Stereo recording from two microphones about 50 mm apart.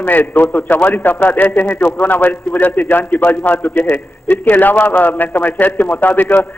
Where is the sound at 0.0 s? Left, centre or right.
Left.